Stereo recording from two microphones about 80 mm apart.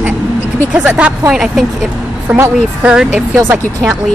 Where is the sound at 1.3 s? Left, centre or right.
Centre.